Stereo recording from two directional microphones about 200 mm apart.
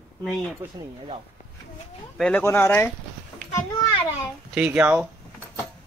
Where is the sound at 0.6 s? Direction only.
10° right (ahead or behind).